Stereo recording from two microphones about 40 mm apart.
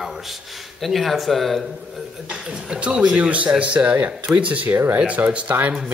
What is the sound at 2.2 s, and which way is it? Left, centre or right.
A man's voice, right.